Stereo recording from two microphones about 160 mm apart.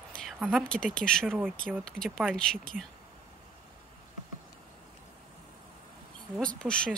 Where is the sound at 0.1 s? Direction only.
5° right (ahead or behind).